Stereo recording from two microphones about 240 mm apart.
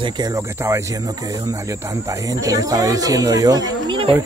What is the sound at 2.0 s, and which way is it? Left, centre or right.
Speech, centre.